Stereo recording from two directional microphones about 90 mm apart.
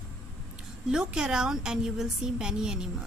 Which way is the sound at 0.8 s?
10° right (ahead or behind).